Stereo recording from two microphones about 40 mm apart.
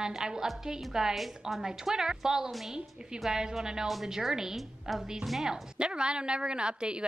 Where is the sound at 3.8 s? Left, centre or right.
Centre.